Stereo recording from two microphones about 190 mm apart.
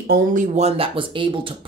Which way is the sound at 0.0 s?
50° right (ahead or behind).